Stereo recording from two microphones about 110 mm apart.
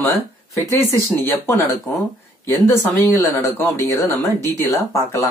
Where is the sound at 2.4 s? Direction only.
25° left (ahead or behind).